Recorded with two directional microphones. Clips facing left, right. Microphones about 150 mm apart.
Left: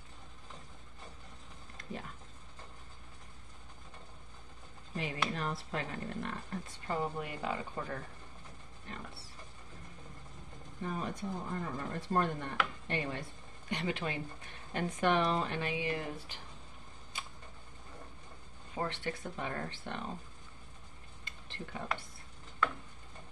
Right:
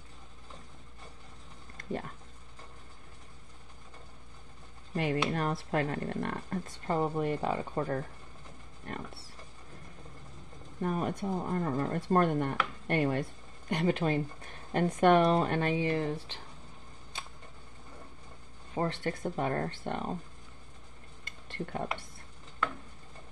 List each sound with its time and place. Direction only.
1.8 s a sound: 50° right (ahead or behind)
4.9 s speech: 60° right (ahead or behind)
5.3 s speech: 50° right (ahead or behind)
6.9 s speech: 40° right (ahead or behind)
8.9 s speech: 55° right (ahead or behind)
10.8 s speech: 55° right (ahead or behind)
13.7 s speech: 45° right (ahead or behind)
18.8 s speech: 45° right (ahead or behind)
21.2 s a sound: 55° right (ahead or behind)